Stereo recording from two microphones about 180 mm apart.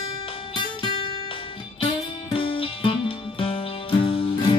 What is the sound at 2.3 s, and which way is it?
Music, 30° left (ahead or behind).